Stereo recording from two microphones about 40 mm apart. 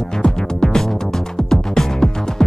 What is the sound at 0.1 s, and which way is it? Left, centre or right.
Music, centre.